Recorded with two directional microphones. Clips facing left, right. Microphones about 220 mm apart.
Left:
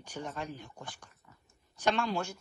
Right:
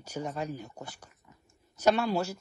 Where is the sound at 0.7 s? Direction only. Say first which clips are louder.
Right 3 dB; 10° right (ahead or behind).